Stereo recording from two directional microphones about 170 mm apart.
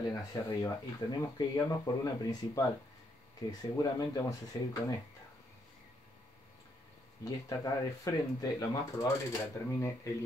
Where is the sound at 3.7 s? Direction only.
20° left (ahead or behind).